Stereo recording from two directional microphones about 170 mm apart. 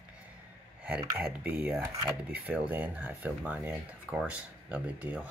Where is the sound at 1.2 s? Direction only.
10° right (ahead or behind).